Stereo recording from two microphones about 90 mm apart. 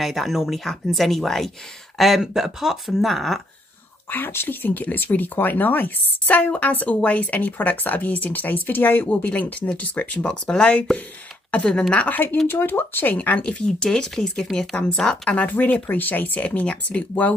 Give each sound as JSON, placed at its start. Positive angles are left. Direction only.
{"t": 0.0, "sound": "speech", "side_deg": 0}
{"t": 4.1, "sound": "speech", "side_deg": 25}